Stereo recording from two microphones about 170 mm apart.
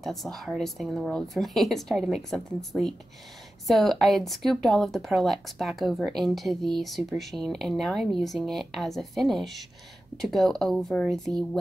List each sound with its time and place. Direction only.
0.0 s speech: centre (ahead or behind)